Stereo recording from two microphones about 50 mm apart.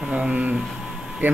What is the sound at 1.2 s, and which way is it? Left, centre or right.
Speech, right.